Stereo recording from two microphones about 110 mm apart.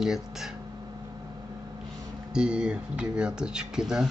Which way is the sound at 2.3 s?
10° right (ahead or behind).